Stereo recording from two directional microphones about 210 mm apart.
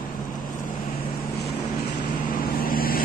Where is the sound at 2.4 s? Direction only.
45° left (ahead or behind).